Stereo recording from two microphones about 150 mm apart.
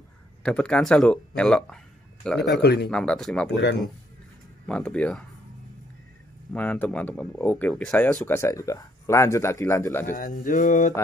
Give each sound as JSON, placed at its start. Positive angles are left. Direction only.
{"t": 0.4, "sound": "speech", "side_deg": 5}
{"t": 2.6, "sound": "speech", "side_deg": 90}
{"t": 2.9, "sound": "speech", "side_deg": 5}
{"t": 6.5, "sound": "speech", "side_deg": 10}
{"t": 10.1, "sound": "a sound", "side_deg": 60}